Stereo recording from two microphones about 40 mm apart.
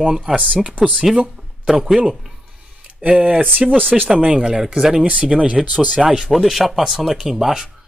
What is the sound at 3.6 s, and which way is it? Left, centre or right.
Speech, centre.